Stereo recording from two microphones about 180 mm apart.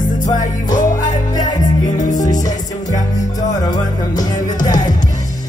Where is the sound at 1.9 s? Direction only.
45° left (ahead or behind).